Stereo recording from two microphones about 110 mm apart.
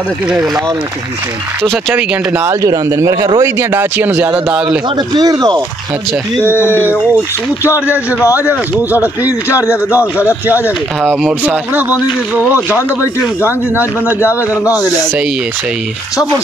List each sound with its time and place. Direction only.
1.6 s speech: 5° left (ahead or behind)
2.0 s a man's voice: 25° right (ahead or behind)
4.9 s speech: 40° right (ahead or behind)
7.8 s a man's voice: 15° right (ahead or behind)
9.5 s speech: 25° left (ahead or behind)
9.8 s a man's voice: 15° right (ahead or behind)
12.7 s speech: 25° left (ahead or behind)
13.5 s a man's voice: 15° right (ahead or behind)